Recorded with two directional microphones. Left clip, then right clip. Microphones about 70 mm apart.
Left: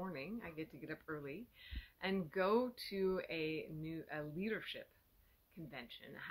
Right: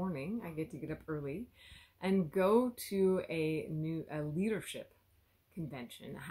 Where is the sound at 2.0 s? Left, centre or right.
Right.